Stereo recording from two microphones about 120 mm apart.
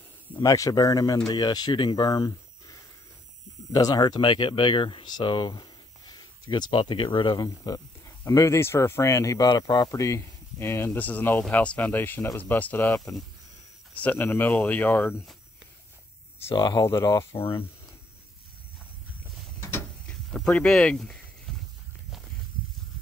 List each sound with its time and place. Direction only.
0.4 s speech: 30° left (ahead or behind)
16.5 s speech: 35° left (ahead or behind)
17.4 s speech: 50° left (ahead or behind)
20.1 s speech: 5° left (ahead or behind)
21.5 s walk: 5° left (ahead or behind)